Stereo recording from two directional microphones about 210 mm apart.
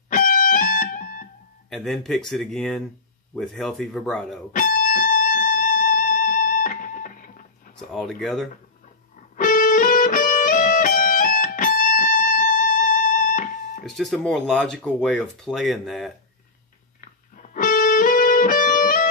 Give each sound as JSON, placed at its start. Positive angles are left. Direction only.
{"t": 0.1, "sound": "music", "side_deg": 40}
{"t": 1.7, "sound": "speech", "side_deg": 0}
{"t": 4.5, "sound": "music", "side_deg": 40}
{"t": 7.9, "sound": "speech", "side_deg": 0}
{"t": 9.4, "sound": "music", "side_deg": 40}
{"t": 13.8, "sound": "speech", "side_deg": 0}
{"t": 17.4, "sound": "music", "side_deg": 40}